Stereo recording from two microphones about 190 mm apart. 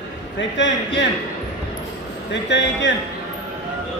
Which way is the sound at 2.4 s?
70° left (ahead or behind).